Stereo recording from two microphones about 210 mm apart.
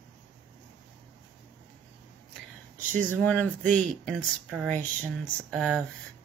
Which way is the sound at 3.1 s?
5° left (ahead or behind).